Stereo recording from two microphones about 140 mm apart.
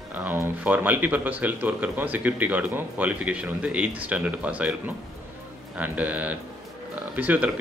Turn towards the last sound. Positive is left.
turn(degrees=-10)  # may be behind; listen again after turning